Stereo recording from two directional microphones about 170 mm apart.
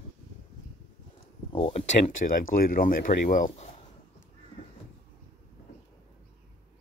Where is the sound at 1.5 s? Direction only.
30° left (ahead or behind).